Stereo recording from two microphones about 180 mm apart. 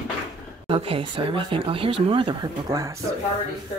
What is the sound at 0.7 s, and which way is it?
Speech, 30° right (ahead or behind).